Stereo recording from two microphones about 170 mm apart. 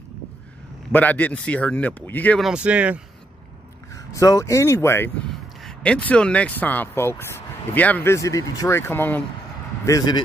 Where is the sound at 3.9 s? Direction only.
20° left (ahead or behind).